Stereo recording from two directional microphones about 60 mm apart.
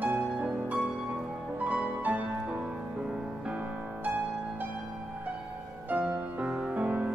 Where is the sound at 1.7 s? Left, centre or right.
Right.